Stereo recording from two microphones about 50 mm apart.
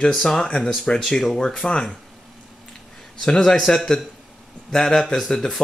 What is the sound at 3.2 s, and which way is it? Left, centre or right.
Speech, centre.